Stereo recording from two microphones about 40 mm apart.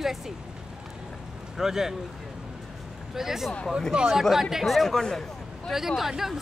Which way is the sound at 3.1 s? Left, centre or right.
Centre.